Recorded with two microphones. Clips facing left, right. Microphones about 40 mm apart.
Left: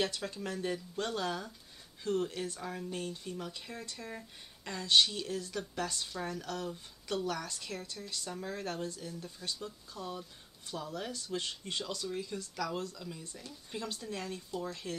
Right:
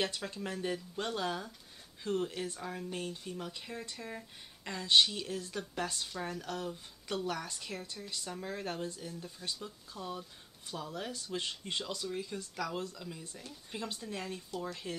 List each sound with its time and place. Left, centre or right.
0.0 s speech: centre
6.7 s speech: centre
7.2 s speech: centre